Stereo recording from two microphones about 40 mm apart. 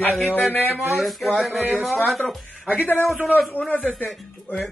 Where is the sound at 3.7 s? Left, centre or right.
Left.